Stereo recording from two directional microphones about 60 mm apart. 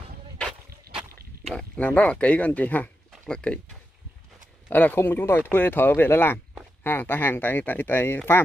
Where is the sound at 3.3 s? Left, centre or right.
Centre.